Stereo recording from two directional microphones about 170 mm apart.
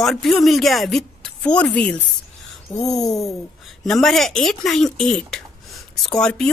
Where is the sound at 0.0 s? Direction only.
Centre (ahead or behind).